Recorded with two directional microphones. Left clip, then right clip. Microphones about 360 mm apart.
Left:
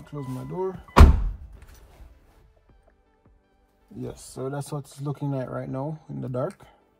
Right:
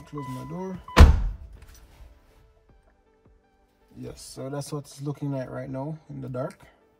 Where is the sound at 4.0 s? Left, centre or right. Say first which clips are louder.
Left 4 dB; centre.